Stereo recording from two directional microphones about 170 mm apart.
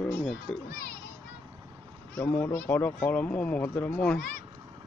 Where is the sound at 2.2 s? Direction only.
10° left (ahead or behind).